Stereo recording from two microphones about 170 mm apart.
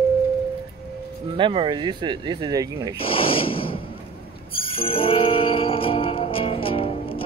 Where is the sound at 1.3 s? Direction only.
30° right (ahead or behind).